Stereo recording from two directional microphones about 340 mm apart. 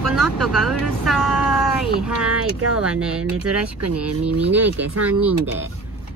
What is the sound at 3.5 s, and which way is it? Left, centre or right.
Speech, right.